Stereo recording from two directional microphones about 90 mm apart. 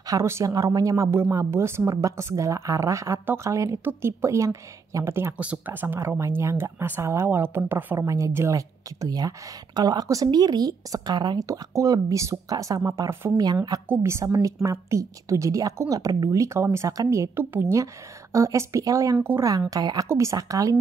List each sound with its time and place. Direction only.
0.0 s speech: 40° right (ahead or behind)
5.4 s speech: 20° right (ahead or behind); by 19.1 s 40° right (ahead or behind)
19.1 s speech: 25° right (ahead or behind)
19.7 s a woman's voice: 45° right (ahead or behind)
20.1 s speech: 35° right (ahead or behind)